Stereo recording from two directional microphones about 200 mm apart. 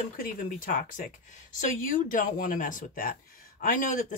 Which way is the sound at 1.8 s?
40° left (ahead or behind).